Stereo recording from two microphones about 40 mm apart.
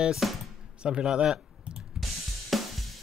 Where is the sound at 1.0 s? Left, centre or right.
Centre.